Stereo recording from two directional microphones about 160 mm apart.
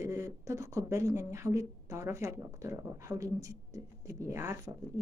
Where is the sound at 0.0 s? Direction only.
15° right (ahead or behind).